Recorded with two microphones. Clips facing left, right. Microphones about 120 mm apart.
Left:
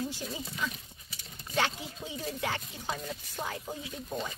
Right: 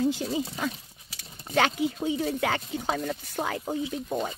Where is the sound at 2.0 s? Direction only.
70° right (ahead or behind).